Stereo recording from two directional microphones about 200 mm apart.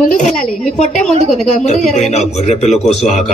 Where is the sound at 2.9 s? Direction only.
Centre (ahead or behind).